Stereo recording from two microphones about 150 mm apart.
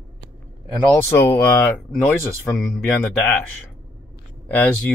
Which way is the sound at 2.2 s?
15° left (ahead or behind).